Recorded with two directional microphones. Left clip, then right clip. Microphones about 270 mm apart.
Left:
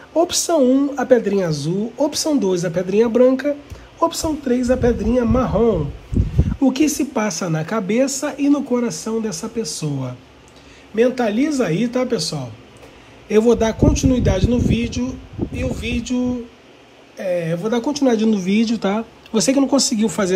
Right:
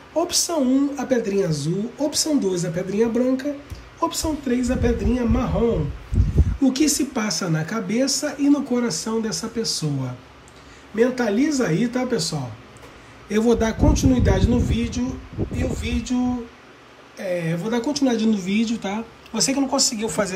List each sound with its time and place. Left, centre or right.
0.5 s speech: centre
1.0 s a man's voice: centre
4.2 s speech: centre
6.6 s a man's voice: centre
17.2 s speech: centre
19.5 s speech: left